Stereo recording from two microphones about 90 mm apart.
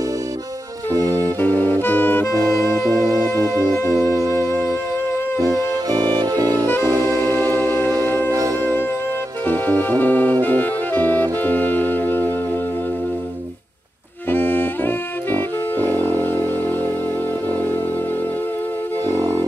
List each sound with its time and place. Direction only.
1.0 s music: 20° left (ahead or behind)
2.9 s music: 40° right (ahead or behind)
7.2 s music: 25° left (ahead or behind)
8.3 s music: 40° right (ahead or behind)
9.5 s music: 20° left (ahead or behind)
10.4 s saxophone: 20° left (ahead or behind)
11.4 s music: 20° left (ahead or behind)
14.3 s music: 25° left (ahead or behind)
19.0 s music: 40° right (ahead or behind)